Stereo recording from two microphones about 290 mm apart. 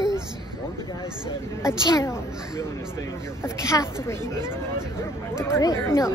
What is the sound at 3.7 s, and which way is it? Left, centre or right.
Speech, centre.